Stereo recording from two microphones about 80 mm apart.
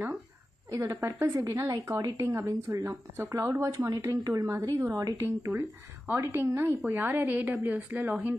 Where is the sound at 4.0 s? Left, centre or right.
Right.